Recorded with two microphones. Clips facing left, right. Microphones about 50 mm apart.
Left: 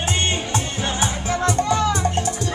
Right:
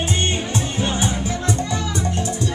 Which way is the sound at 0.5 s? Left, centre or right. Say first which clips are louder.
Right 1 dB; left.